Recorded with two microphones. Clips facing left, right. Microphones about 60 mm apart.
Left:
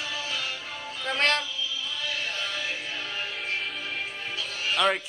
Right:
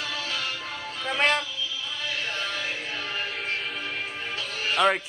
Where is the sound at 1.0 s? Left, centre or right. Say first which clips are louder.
Right 1 dB; centre.